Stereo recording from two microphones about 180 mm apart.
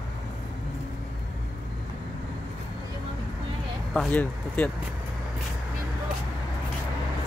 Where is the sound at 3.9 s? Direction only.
10° left (ahead or behind).